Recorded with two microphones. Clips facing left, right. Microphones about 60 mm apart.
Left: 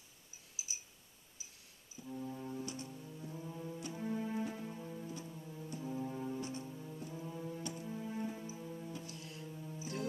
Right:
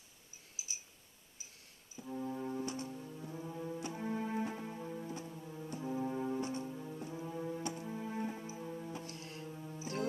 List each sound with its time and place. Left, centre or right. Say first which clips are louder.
2.0 s music: right 4 dB; right
2.9 s music: right 2 dB; centre
9.0 s music: right 2 dB; right
9.5 s music: right 1 dB; right
9.8 s music: right 3 dB; right